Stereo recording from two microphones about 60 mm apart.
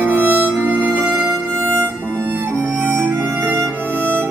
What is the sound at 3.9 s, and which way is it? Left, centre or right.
Harmonica, right.